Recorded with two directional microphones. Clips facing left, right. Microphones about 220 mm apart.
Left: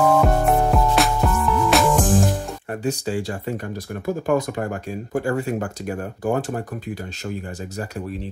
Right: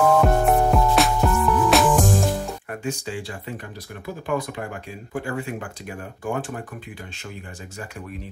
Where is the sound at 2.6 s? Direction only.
35° left (ahead or behind).